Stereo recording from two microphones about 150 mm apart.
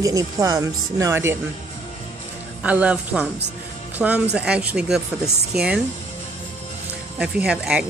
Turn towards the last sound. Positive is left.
turn(degrees=-5)  # may be behind; listen again after turning